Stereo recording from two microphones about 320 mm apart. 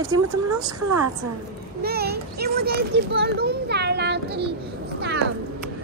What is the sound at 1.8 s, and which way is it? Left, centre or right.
A child's voice, right.